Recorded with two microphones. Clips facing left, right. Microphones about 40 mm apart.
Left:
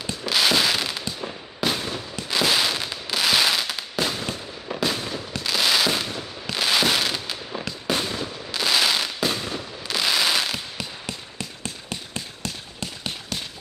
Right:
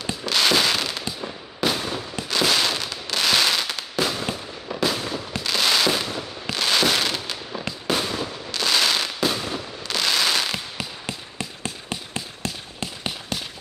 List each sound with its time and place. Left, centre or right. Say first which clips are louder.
0.2 s fireworks: even; centre
2.3 s fireworks: even; centre
8.5 s fireworks: even; centre
11.1 s a sound: right 2 dB; right